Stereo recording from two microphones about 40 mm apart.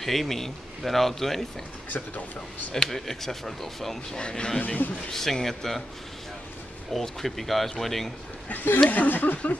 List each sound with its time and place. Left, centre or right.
0.0 s speech: centre
2.7 s speech: centre
4.2 s speech: left
4.6 s speech: left
5.1 s speech: centre
6.9 s speech: centre
8.5 s speech: left